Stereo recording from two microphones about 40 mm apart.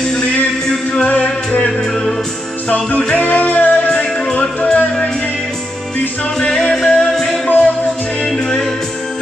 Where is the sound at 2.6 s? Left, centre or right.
Left.